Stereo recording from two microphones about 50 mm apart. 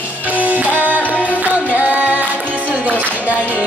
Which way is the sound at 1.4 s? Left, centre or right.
Right.